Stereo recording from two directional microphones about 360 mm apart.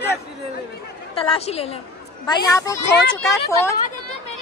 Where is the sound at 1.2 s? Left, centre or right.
Centre.